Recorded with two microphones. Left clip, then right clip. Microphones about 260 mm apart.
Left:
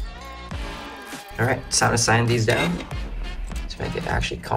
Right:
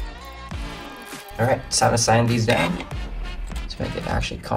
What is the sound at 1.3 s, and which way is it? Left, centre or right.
Speech, centre.